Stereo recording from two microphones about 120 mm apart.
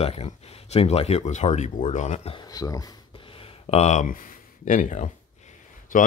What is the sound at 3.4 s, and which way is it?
Speech, 60° left (ahead or behind).